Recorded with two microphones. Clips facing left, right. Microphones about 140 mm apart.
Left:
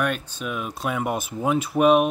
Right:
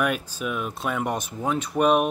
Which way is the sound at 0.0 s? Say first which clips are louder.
Right 1 dB; 5° right (ahead or behind).